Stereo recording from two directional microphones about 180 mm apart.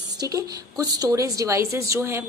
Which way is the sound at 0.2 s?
20° right (ahead or behind).